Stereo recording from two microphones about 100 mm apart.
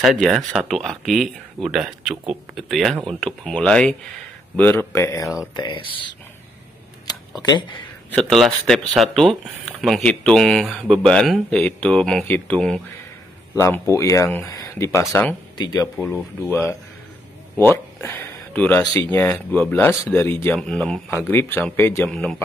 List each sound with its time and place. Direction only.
0.0 s speech: centre (ahead or behind)
4.6 s speech: 20° left (ahead or behind)
5.6 s speech: 55° left (ahead or behind)
8.1 s speech: 5° left (ahead or behind)
13.6 s speech: 30° left (ahead or behind)
15.5 s speech: 45° left (ahead or behind)
16.4 s speech: 25° left (ahead or behind)
17.6 s a sound: 20° left (ahead or behind)
19.2 s speech: 15° left (ahead or behind)
20.5 s speech: 5° left (ahead or behind)
21.1 s speech: 25° left (ahead or behind)
22.1 s speech: 5° left (ahead or behind)